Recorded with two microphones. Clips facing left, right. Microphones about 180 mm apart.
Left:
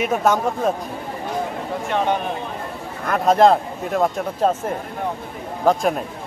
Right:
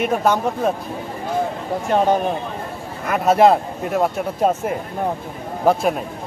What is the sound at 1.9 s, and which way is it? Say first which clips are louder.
Speech: right 5 dB; 40° right (ahead or behind).